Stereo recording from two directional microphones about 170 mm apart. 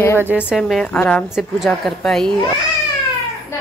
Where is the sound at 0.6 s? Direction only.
5° left (ahead or behind).